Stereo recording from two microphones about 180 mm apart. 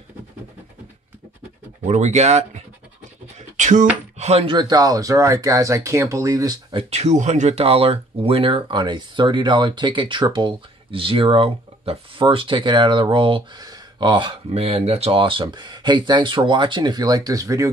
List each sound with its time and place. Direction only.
1.9 s speech: 40° right (ahead or behind)
4.6 s speech: 20° right (ahead or behind)